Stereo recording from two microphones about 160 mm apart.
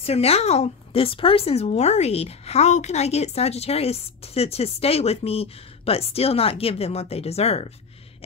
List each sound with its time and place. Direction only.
0.0 s speech: 40° left (ahead or behind)